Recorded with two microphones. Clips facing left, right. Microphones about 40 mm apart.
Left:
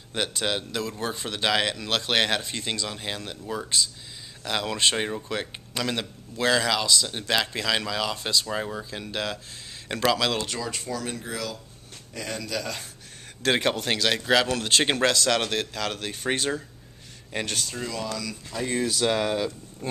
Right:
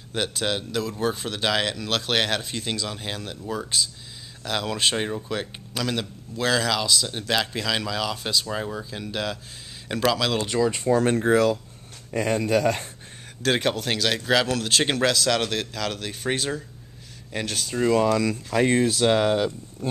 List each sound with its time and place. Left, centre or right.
0.1 s speech: centre
10.4 s speech: centre
10.8 s speech: right
13.4 s speech: centre
17.8 s speech: right
18.8 s speech: right